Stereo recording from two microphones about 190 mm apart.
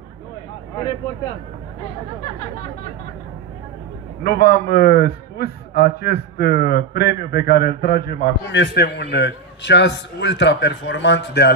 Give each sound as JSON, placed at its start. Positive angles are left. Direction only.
{"t": 4.2, "sound": "a man's voice", "side_deg": 55}